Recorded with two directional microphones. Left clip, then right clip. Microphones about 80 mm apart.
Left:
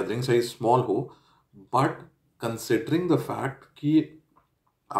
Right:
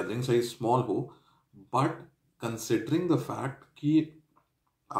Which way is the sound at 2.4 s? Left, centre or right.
Left.